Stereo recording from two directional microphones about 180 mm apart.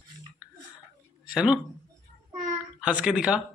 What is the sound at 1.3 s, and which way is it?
Speech, 5° right (ahead or behind).